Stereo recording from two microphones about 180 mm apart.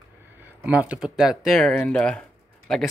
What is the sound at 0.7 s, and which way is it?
Speech, 5° right (ahead or behind).